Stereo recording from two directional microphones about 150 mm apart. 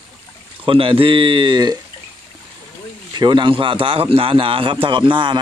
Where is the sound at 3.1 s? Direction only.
30° right (ahead or behind).